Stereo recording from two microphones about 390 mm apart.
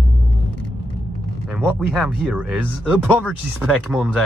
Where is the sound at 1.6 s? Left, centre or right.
Centre.